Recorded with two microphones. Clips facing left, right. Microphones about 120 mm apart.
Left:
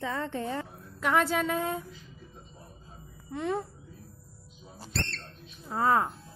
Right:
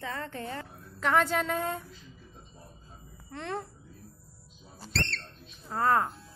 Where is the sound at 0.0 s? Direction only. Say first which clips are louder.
Left 4 dB; 20° left (ahead or behind); by 1.9 s centre (ahead or behind).